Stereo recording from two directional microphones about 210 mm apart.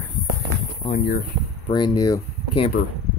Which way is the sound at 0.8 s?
35° left (ahead or behind).